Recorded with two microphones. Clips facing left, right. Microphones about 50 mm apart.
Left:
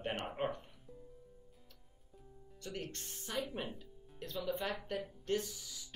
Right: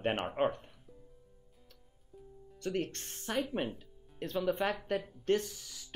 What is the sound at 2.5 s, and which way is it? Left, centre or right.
Speech, right.